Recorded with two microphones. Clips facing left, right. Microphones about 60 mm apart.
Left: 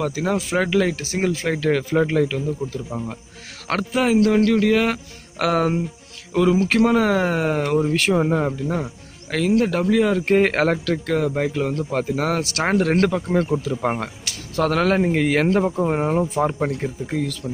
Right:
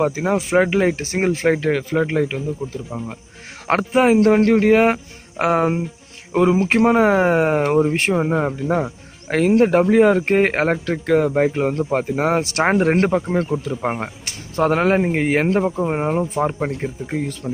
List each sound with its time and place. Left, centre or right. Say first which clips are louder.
0.0 s speech: right 3 dB; right
16.4 s speech: even; centre
17.1 s speech: even; right